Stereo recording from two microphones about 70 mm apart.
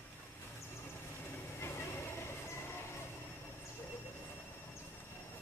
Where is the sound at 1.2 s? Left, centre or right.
Left.